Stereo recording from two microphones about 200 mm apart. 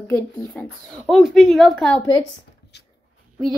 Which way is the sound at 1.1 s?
Centre (ahead or behind).